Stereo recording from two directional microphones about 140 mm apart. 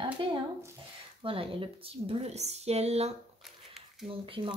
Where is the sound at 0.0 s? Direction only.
35° right (ahead or behind).